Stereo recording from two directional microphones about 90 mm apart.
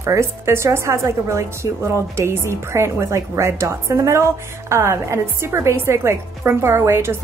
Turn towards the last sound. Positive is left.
turn(degrees=-25)  # may be behind; listen again after turning